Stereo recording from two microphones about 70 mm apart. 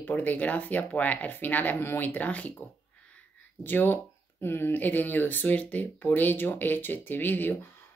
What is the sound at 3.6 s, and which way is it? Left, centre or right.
Speech, left.